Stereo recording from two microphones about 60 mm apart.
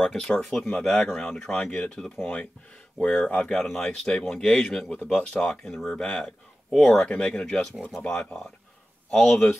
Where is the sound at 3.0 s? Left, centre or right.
Left.